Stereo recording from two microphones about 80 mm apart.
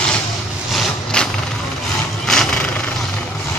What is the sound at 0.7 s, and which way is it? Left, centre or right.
Vehicle, centre.